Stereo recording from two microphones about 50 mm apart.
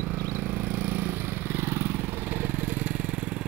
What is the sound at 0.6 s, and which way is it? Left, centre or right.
Vehicle, right.